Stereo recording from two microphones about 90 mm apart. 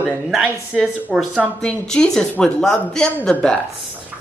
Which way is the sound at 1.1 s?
10° right (ahead or behind).